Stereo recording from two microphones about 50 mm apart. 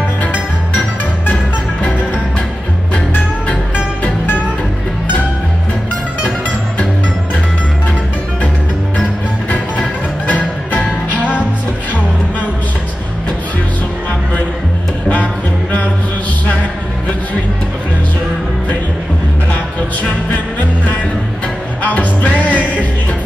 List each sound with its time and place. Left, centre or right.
0.7 s music: left
9.5 s music: left
21.8 s music: left